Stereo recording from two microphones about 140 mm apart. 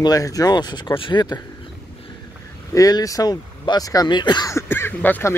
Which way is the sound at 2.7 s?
25° left (ahead or behind).